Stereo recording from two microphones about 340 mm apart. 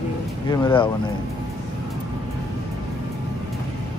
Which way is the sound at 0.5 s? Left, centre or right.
Centre.